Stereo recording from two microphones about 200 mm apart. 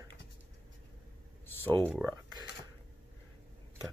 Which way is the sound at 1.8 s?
5° right (ahead or behind).